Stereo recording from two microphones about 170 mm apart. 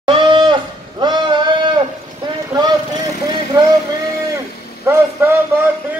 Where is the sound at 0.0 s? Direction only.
30° right (ahead or behind).